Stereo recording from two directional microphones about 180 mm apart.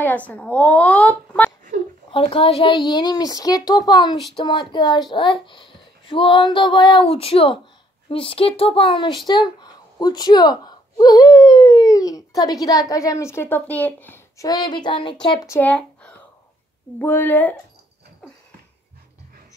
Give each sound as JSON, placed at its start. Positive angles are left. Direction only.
{"t": 0.0, "sound": "speech", "side_deg": 10}
{"t": 2.0, "sound": "a woman's voice", "side_deg": 30}
{"t": 15.4, "sound": "speech", "side_deg": 10}